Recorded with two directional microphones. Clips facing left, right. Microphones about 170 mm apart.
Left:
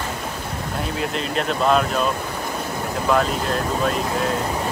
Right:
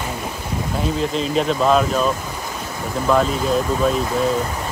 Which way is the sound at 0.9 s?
Centre (ahead or behind).